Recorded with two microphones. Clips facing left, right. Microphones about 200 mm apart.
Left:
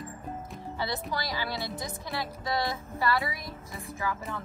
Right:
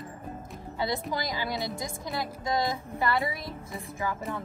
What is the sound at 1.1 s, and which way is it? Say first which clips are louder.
A woman's voice: right 2 dB; 20° right (ahead or behind).